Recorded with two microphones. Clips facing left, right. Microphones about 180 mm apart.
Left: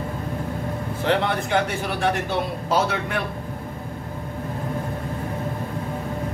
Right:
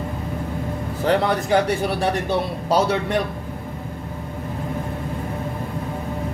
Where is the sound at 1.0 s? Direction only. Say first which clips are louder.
Right 3 dB; 40° right (ahead or behind).